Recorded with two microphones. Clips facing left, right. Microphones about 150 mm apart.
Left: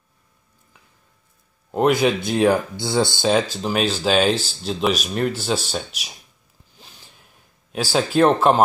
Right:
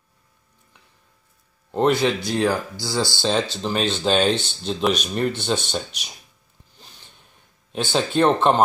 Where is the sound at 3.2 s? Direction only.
10° left (ahead or behind).